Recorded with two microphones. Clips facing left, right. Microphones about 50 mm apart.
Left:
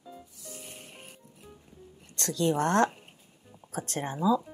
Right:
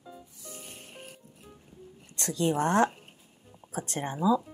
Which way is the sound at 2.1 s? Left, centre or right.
Centre.